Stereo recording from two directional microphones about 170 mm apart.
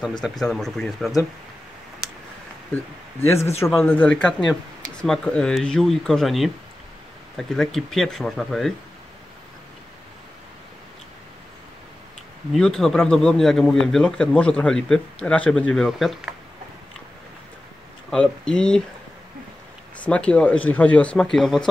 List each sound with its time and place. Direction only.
0.2 s a man's voice: centre (ahead or behind)
2.7 s a man's voice: 15° left (ahead or behind)
12.5 s a man's voice: centre (ahead or behind)
18.1 s a man's voice: 5° left (ahead or behind)
20.0 s speech: 5° left (ahead or behind)